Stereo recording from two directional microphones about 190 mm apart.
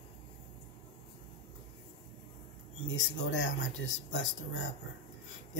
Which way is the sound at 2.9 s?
75° left (ahead or behind).